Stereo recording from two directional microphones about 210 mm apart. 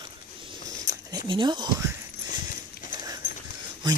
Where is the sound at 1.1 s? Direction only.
20° right (ahead or behind).